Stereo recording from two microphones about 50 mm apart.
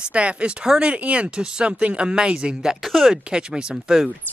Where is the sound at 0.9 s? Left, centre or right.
Right.